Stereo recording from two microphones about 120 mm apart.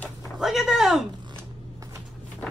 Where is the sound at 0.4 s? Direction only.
5° right (ahead or behind).